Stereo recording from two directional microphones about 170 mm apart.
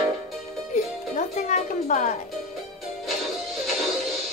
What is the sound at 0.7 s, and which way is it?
Music, 45° left (ahead or behind).